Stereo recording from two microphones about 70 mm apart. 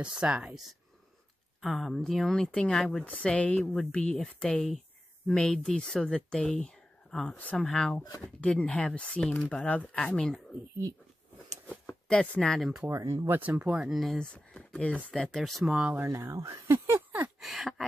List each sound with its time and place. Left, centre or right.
0.0 s speech: centre
1.6 s speech: centre
3.0 s speech: centre
11.7 s speech: centre
12.8 s speech: right
13.3 s speech: right
13.7 s speech: centre
14.1 s speech: centre
15.1 s speech: centre
16.0 s speech: right
16.7 s a sound: right
17.4 s a sound: centre